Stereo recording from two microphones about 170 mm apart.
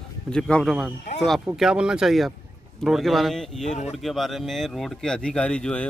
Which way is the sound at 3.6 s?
45° left (ahead or behind).